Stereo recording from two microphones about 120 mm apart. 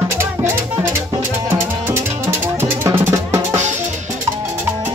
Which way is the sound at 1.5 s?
20° right (ahead or behind).